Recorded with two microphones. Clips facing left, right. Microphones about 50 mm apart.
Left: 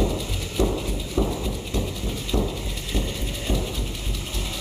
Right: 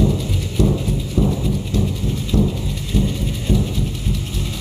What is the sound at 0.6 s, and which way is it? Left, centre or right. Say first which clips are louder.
Music: right 5 dB; left.